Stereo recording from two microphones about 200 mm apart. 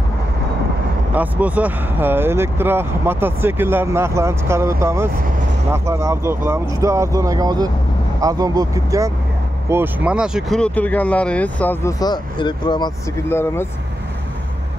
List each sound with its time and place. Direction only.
1.1 s speech: 5° right (ahead or behind); by 12.9 s 20° left (ahead or behind)
13.3 s speech: 10° left (ahead or behind)